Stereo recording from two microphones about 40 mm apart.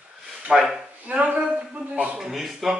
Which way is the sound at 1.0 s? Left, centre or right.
Right.